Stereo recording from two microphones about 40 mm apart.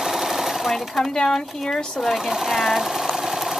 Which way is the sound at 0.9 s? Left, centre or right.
Centre.